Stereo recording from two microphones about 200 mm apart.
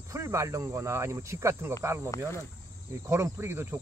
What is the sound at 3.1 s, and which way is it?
Speech, 10° right (ahead or behind).